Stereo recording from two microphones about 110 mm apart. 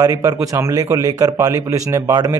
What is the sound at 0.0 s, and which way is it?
A man's voice, 30° right (ahead or behind).